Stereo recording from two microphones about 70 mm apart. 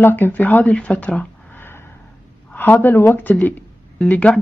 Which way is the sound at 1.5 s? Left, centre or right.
Left.